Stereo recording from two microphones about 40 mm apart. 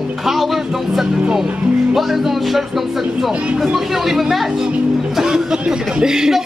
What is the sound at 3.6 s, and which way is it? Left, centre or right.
Speech, centre.